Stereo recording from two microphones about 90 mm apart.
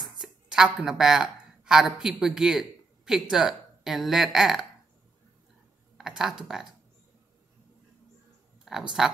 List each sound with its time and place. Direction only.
0.0 s speech: 5° right (ahead or behind)
5.9 s speech: 5° right (ahead or behind)
8.7 s a sound: 5° right (ahead or behind)